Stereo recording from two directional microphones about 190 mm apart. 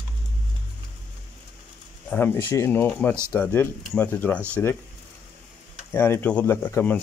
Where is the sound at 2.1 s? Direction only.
10° left (ahead or behind).